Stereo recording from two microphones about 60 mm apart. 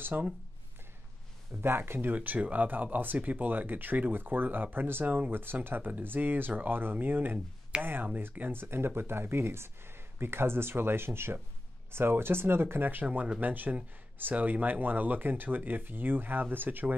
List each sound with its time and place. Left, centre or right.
0.0 s speech: right
1.6 s speech: right
2.1 s speech: right